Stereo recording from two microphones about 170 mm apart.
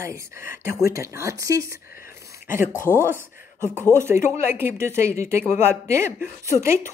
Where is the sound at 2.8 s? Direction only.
15° right (ahead or behind).